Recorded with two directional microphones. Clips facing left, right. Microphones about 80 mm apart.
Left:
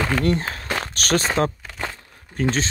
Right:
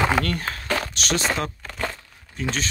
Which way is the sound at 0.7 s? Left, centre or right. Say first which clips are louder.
Left 3 dB; left.